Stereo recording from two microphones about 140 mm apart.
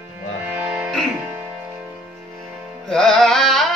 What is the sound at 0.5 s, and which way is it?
Music, 10° right (ahead or behind).